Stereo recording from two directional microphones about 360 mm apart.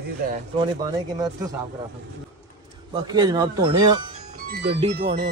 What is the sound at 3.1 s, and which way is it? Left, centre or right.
Speech, centre.